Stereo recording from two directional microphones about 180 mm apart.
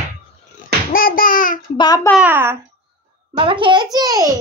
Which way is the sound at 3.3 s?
30° right (ahead or behind).